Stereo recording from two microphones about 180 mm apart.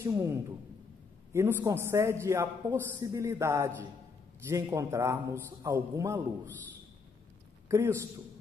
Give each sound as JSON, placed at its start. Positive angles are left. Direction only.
{"t": 0.0, "sound": "a man's voice", "side_deg": -15}
{"t": 7.6, "sound": "a man's voice", "side_deg": -15}